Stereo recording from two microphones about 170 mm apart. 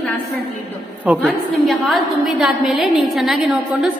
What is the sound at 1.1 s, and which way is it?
A woman's voice, 10° right (ahead or behind).